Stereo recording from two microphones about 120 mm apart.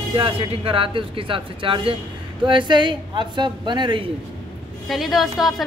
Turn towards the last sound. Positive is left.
turn(degrees=0)  # may be behind; listen again after turning